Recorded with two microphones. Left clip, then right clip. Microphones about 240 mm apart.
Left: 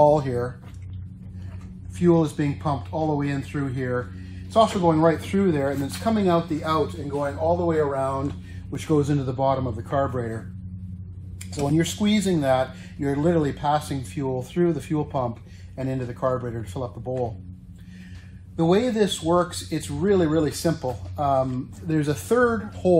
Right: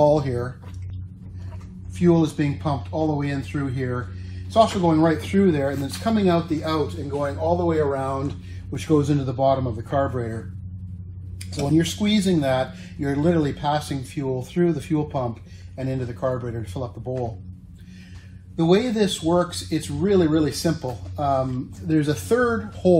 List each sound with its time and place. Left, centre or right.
0.0 s speech: centre
2.0 s speech: centre
11.6 s speech: centre
18.6 s speech: centre